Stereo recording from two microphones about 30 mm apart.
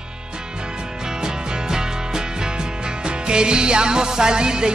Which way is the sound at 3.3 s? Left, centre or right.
Right.